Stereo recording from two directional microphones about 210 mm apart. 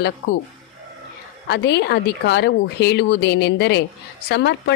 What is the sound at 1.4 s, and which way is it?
Speech, 55° left (ahead or behind).